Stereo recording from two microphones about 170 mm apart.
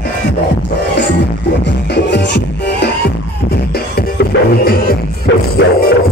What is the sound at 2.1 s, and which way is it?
Music, 90° left.